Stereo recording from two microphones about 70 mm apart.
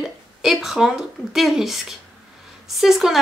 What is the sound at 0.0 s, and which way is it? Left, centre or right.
Speech, centre.